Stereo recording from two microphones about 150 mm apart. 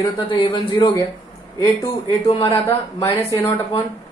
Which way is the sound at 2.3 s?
35° left (ahead or behind).